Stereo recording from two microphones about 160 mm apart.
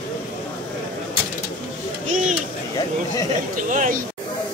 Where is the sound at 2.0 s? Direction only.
50° right (ahead or behind).